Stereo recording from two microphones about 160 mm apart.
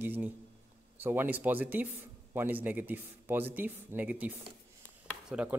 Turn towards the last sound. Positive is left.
turn(degrees=-5)  # may be behind; listen again after turning